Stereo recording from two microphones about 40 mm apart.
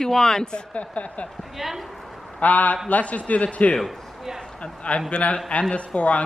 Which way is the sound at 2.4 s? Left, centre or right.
Left.